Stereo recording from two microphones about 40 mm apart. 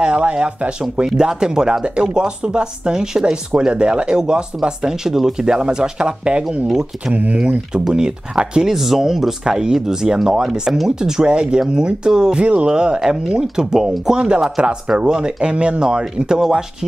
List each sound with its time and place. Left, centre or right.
0.0 s speech: right
8.6 s speech: centre